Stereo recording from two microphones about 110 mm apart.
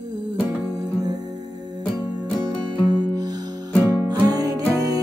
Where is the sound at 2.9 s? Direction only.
40° right (ahead or behind).